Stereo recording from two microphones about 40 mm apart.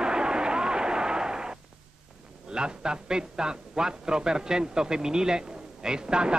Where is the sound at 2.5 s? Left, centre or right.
Right.